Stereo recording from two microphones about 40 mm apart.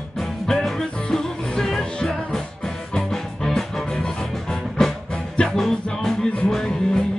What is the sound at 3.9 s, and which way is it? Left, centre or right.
Music, centre.